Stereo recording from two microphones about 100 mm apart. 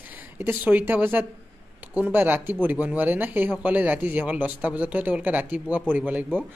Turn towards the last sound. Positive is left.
turn(degrees=-15)  # may be behind; listen again after turning